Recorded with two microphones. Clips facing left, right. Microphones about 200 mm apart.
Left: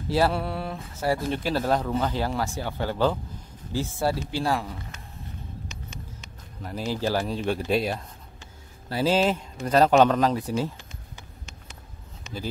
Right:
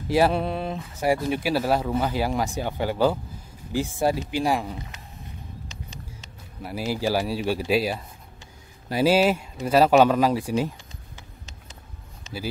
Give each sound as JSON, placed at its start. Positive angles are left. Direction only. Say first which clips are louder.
{"t": 0.1, "sound": "speech", "louder": "right 3 dB", "side_deg": -15}
{"t": 6.6, "sound": "speech", "louder": "right 2 dB", "side_deg": -10}